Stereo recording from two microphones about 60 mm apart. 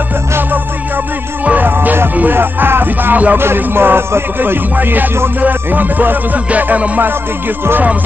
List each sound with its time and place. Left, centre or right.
1.4 s music: right
3.3 s music: right